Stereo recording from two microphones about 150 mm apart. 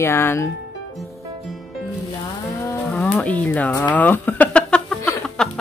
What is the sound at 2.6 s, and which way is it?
Livestock, 10° left (ahead or behind).